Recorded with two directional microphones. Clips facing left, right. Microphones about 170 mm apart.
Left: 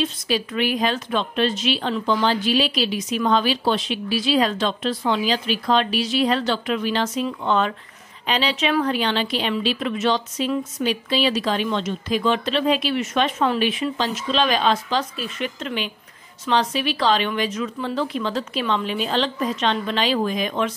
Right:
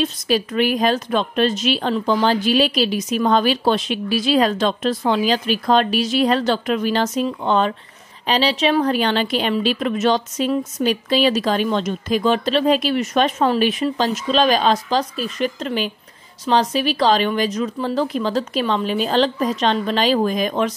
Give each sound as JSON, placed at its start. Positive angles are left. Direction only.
{"t": 0.0, "sound": "a woman's voice", "side_deg": -45}